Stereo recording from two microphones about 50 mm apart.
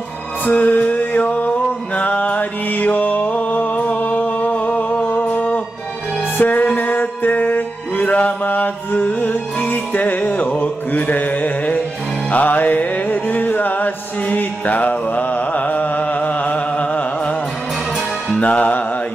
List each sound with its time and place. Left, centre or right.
0.5 s music: left
3.8 s a sound: left
6.3 s music: left
18.3 s music: left